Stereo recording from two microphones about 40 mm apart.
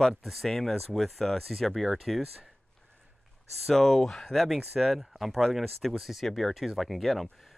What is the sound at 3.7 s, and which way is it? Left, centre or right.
Speech, centre.